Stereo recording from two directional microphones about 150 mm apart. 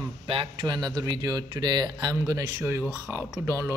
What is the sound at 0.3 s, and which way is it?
A man's voice, 35° right (ahead or behind).